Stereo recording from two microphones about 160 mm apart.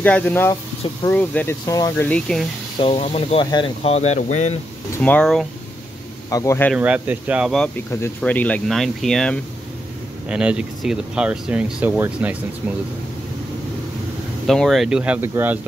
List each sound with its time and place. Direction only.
0.0 s speech: 10° left (ahead or behind)
2.0 s speech: 5° left (ahead or behind)
2.8 s speech: 35° left (ahead or behind)
4.9 s speech: 10° left (ahead or behind)
6.3 s speech: 20° left (ahead or behind)
6.7 s speech: 10° right (ahead or behind)
8.2 s speech: 10° left (ahead or behind)
10.2 s speech: 5° right (ahead or behind)
14.4 s speech: centre (ahead or behind)